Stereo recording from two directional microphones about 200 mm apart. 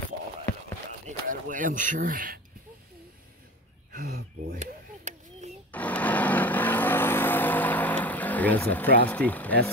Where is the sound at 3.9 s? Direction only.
50° right (ahead or behind).